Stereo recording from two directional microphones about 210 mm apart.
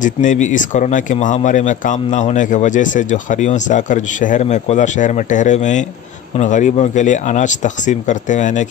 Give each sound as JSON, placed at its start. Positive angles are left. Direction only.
{"t": 0.0, "sound": "speech", "side_deg": 35}